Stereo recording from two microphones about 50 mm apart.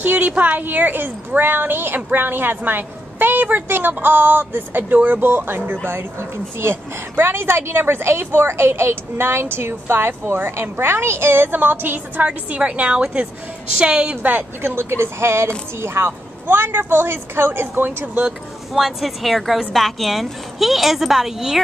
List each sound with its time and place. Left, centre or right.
0.0 s a woman's voice: right
12.2 s a woman's voice: right
14.6 s a woman's voice: right
18.7 s a woman's voice: centre